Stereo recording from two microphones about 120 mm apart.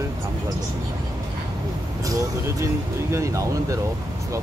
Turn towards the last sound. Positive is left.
turn(degrees=-25)  # may be behind; listen again after turning